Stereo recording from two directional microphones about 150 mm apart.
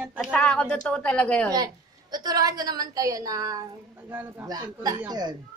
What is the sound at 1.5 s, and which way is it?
A woman's voice, 25° right (ahead or behind).